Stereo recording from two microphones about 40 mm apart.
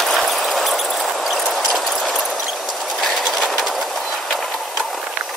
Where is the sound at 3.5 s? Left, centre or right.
Centre.